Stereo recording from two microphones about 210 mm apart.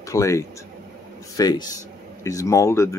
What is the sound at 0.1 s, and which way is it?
Speech, 15° left (ahead or behind).